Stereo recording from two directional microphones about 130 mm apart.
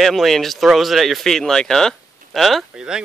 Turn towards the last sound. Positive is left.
turn(degrees=-5)  # may be behind; listen again after turning